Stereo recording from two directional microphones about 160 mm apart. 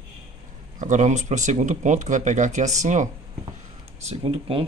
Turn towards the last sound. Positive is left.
turn(degrees=-35)  # may be behind; listen again after turning